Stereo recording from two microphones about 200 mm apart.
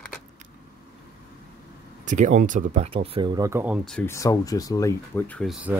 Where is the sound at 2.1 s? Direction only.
40° right (ahead or behind); by 4.1 s 5° left (ahead or behind).